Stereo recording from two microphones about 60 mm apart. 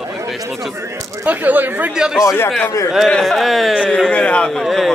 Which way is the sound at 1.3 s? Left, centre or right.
Right.